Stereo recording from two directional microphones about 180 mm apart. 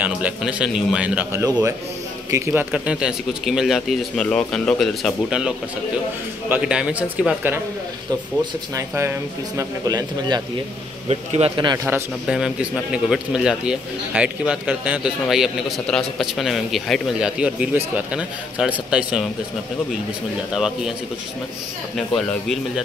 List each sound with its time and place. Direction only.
0.0 s a man's voice: 5° right (ahead or behind)
6.5 s a man's voice: 5° right (ahead or behind)
8.7 s a man's voice: 15° right (ahead or behind)
11.1 s a man's voice: 35° right (ahead or behind)
12.3 s a man's voice: centre (ahead or behind)
20.5 s a man's voice: 5° right (ahead or behind)
21.9 s a man's voice: 5° left (ahead or behind)